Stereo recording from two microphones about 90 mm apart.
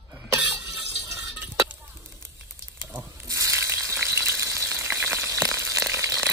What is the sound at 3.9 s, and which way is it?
Frying, 25° right (ahead or behind).